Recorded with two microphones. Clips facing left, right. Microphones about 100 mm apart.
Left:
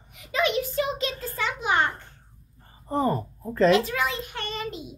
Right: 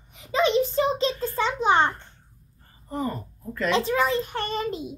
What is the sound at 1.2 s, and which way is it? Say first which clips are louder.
Speech: right 6 dB; 30° right (ahead or behind).